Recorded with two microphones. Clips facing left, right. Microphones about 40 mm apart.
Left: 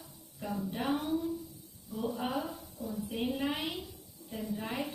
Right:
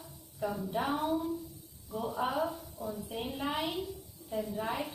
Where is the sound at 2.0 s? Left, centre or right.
Centre.